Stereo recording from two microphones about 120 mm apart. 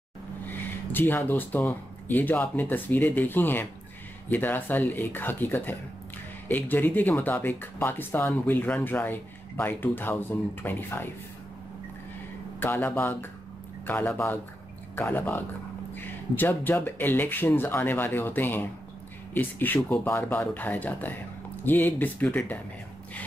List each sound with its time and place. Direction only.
0.5 s speech: 15° left (ahead or behind)
12.5 s speech: 15° left (ahead or behind)